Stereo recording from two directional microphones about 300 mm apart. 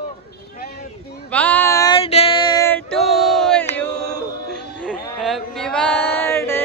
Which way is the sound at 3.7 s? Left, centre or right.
Centre.